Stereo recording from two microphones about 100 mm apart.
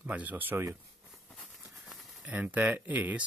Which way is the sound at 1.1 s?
5° left (ahead or behind).